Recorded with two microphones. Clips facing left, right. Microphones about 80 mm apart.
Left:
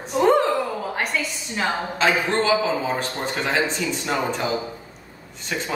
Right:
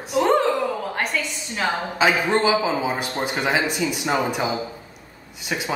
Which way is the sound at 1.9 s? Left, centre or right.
Centre.